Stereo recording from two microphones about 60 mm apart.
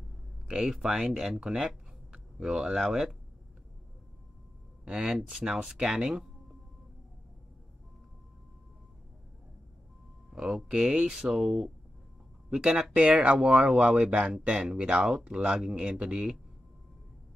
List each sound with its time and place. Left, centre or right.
0.5 s speech: centre
4.8 s speech: centre
10.3 s speech: centre